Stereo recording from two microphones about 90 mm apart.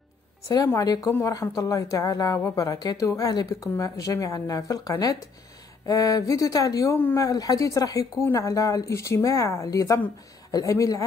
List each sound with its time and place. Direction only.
0.7 s a woman's voice: 45° left (ahead or behind)